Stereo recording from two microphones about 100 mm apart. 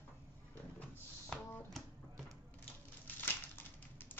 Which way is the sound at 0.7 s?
15° left (ahead or behind).